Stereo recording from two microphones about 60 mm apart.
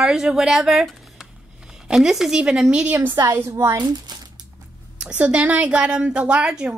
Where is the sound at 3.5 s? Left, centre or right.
Right.